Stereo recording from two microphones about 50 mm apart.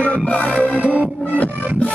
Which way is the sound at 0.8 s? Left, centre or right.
Right.